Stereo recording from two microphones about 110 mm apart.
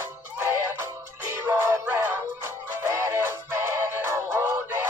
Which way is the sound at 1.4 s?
25° right (ahead or behind).